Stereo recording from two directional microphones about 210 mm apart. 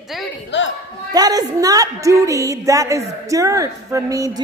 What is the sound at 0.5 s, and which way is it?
Speech, 60° left (ahead or behind).